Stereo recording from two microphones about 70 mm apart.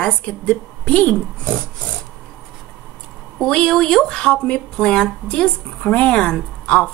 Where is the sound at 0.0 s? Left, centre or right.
Centre.